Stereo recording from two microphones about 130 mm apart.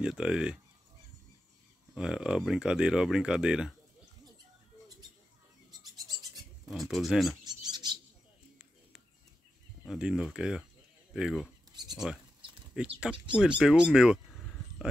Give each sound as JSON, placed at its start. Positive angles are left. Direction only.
{"t": 0.0, "sound": "speech", "side_deg": -5}
{"t": 2.0, "sound": "speech", "side_deg": -5}
{"t": 5.7, "sound": "bird", "side_deg": -30}
{"t": 6.7, "sound": "speech", "side_deg": 0}
{"t": 7.4, "sound": "bird", "side_deg": -30}
{"t": 9.8, "sound": "speech", "side_deg": -5}